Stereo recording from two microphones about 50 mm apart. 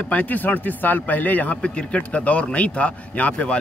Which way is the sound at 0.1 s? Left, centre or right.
Left.